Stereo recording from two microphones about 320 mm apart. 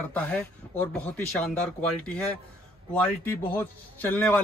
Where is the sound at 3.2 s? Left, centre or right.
Centre.